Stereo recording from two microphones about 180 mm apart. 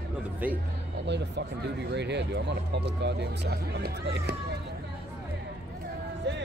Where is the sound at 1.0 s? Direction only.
75° right (ahead or behind).